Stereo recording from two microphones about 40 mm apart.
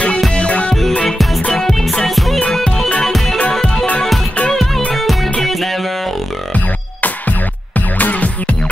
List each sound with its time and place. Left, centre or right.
0.3 s music: left
1.6 s music: centre
4.5 s music: centre
6.5 s music: left